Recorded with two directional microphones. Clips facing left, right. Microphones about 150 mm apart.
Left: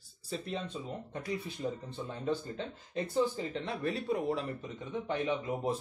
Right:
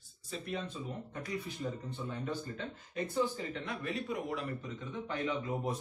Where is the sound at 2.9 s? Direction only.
30° left (ahead or behind).